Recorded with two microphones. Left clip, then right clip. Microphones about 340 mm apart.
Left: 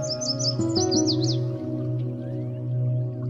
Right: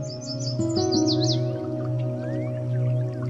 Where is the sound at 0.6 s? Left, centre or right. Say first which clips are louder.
Right 2 dB; centre.